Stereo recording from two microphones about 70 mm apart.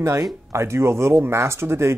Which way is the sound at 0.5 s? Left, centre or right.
Right.